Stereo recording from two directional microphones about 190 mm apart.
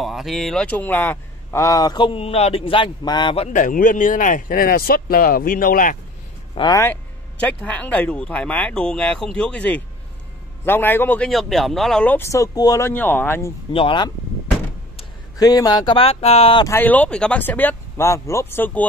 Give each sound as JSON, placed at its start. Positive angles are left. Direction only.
{"t": 0.0, "sound": "speech", "side_deg": 0}
{"t": 3.5, "sound": "speech", "side_deg": 45}
{"t": 6.5, "sound": "speech", "side_deg": 25}
{"t": 6.8, "sound": "speech", "side_deg": 10}
{"t": 13.7, "sound": "speech", "side_deg": 25}
{"t": 15.3, "sound": "speech", "side_deg": 20}
{"t": 16.6, "sound": "speech", "side_deg": 10}